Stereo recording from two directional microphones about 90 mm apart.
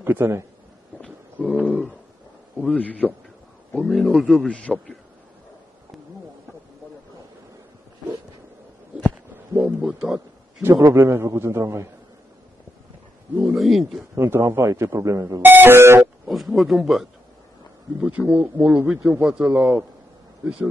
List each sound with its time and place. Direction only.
0.0 s speech: 25° right (ahead or behind)
1.0 s a sound: 15° left (ahead or behind)
2.6 s a man's voice: 15° left (ahead or behind)
4.5 s a man's voice: 10° left (ahead or behind)
9.8 s a man's voice: 10° right (ahead or behind)
10.7 s speech: 35° right (ahead or behind)
13.6 s a man's voice: centre (ahead or behind)
14.1 s speech: 30° right (ahead or behind)
15.4 s speech: 25° right (ahead or behind)
16.0 s speech: centre (ahead or behind)
18.0 s a man's voice: 15° right (ahead or behind)